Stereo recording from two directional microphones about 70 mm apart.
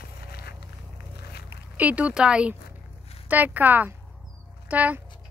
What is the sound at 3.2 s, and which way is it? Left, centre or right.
Speech, right.